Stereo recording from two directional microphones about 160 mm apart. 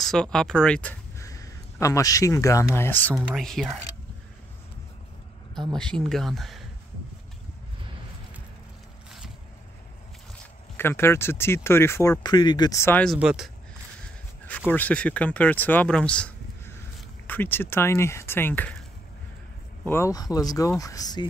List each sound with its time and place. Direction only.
0.0 s speech: 5° left (ahead or behind)
1.2 s speech: 20° left (ahead or behind); by 3.7 s centre (ahead or behind)
5.5 s speech: centre (ahead or behind)
10.8 s speech: 15° left (ahead or behind)
13.0 s speech: centre (ahead or behind)
14.7 s speech: 10° left (ahead or behind)